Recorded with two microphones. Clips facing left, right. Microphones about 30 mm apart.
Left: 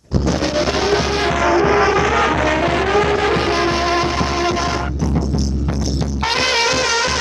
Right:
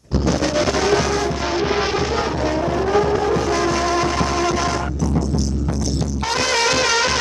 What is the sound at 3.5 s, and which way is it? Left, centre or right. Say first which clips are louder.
Music: left 2 dB; left.